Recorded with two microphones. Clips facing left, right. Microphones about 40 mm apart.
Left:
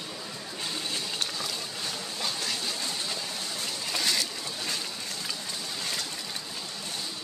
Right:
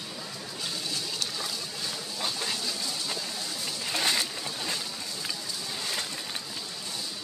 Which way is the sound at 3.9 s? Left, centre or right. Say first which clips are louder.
Right 1 dB; right.